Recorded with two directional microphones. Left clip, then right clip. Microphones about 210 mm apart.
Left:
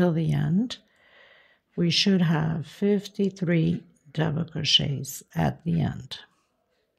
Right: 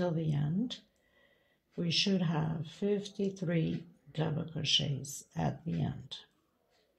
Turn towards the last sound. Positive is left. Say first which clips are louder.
# left 8 dB
turn(degrees=50)  # may be behind; listen again after turning